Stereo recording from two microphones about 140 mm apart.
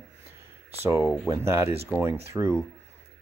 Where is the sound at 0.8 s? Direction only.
5° right (ahead or behind).